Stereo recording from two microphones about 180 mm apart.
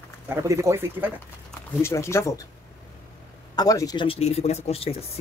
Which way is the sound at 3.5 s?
20° left (ahead or behind).